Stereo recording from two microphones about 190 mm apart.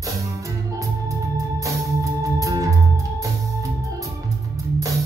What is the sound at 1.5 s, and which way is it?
Music, 15° right (ahead or behind).